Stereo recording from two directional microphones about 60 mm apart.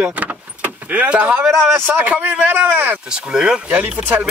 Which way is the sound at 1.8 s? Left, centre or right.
Right.